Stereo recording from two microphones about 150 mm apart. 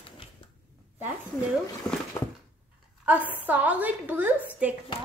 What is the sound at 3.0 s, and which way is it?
A woman's voice, 10° right (ahead or behind).